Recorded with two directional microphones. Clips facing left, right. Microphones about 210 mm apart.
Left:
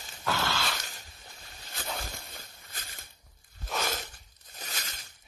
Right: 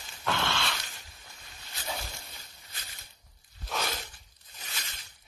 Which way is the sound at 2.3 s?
50° left (ahead or behind).